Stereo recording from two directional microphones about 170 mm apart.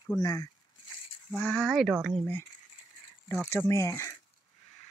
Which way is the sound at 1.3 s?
5° left (ahead or behind).